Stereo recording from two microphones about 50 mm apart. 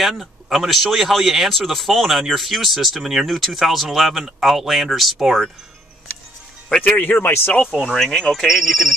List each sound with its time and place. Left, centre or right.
0.0 s speech: centre
6.8 s speech: left
7.6 s speech: centre
7.9 s speech: centre
8.4 s speech: centre